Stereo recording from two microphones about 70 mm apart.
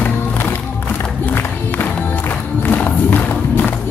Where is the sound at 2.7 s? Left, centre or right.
Left.